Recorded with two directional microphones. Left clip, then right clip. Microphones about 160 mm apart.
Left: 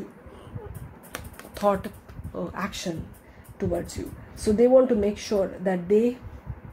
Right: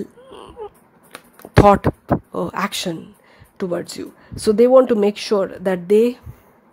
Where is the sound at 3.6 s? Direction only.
65° right (ahead or behind).